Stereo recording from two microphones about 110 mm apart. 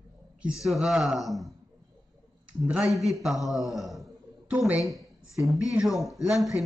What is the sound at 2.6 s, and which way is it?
A man's voice, 10° right (ahead or behind).